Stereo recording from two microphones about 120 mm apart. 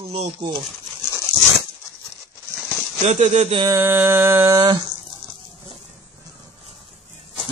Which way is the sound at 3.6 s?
20° right (ahead or behind).